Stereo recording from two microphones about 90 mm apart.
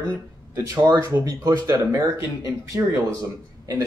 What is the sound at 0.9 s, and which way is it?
Speech, 40° right (ahead or behind).